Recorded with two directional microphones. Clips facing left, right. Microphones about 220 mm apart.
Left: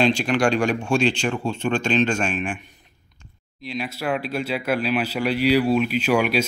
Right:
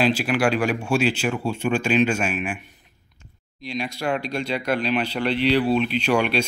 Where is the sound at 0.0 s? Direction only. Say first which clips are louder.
Left 1 dB; 5° right (ahead or behind).